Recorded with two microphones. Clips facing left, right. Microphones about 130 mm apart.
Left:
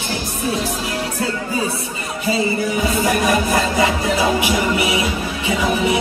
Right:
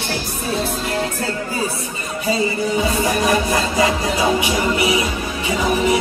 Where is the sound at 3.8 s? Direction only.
25° right (ahead or behind).